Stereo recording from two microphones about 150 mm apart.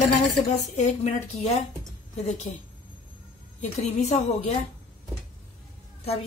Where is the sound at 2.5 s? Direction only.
45° left (ahead or behind).